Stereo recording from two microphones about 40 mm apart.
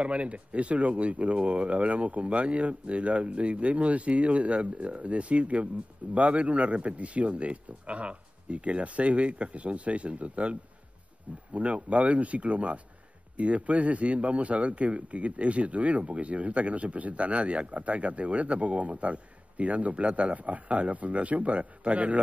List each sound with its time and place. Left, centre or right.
0.0 s a man's voice: right